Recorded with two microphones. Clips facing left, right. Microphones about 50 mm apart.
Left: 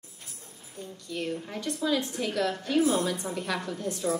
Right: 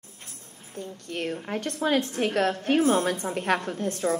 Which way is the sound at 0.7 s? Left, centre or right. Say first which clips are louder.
Right 2 dB; right.